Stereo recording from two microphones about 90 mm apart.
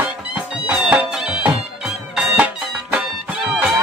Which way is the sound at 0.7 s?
10° right (ahead or behind).